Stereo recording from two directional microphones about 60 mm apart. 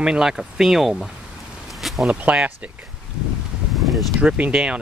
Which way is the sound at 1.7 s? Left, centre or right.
Centre.